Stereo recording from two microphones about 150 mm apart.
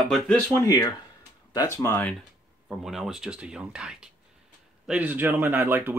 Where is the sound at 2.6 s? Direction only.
5° right (ahead or behind).